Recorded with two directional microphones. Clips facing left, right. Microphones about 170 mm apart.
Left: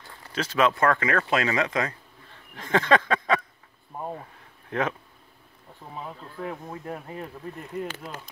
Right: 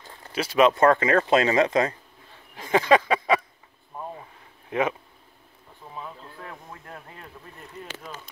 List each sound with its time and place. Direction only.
0.3 s speech: 10° right (ahead or behind); by 2.0 s 25° right (ahead or behind)
2.5 s a sound: 5° right (ahead or behind)
4.6 s speech: 5° right (ahead or behind)
6.7 s speech: 20° left (ahead or behind)